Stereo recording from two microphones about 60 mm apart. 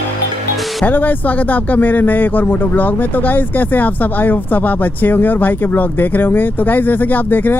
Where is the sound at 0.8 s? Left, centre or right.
Left.